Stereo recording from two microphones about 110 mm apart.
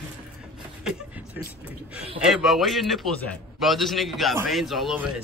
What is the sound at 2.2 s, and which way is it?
Speech, centre (ahead or behind).